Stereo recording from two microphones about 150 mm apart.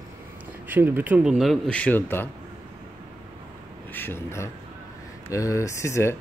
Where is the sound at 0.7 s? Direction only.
10° right (ahead or behind); by 2.2 s 15° left (ahead or behind).